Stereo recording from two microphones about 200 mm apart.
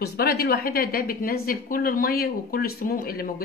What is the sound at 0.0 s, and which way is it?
A woman's voice, 50° left (ahead or behind).